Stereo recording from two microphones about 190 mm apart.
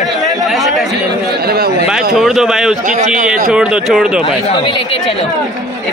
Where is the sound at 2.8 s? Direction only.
40° right (ahead or behind).